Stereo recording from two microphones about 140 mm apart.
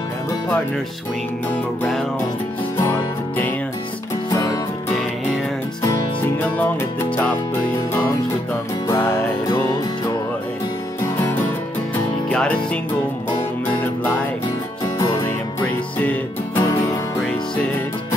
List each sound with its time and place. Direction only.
2.8 s music: 15° left (ahead or behind)
6.4 s music: 15° left (ahead or behind)
8.8 s music: 25° left (ahead or behind)
12.3 s music: 5° left (ahead or behind)
15.0 s music: 25° left (ahead or behind)
15.2 s music: 10° left (ahead or behind)